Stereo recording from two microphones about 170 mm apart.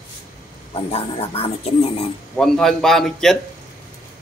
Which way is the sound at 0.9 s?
35° left (ahead or behind).